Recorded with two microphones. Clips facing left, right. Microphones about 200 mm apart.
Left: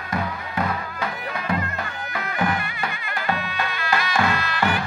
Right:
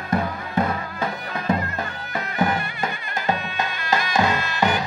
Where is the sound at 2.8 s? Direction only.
20° right (ahead or behind).